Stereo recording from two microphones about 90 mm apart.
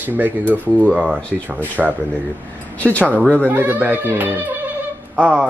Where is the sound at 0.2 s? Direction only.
20° right (ahead or behind).